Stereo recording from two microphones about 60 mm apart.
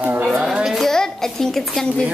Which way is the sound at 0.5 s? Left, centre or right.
Centre.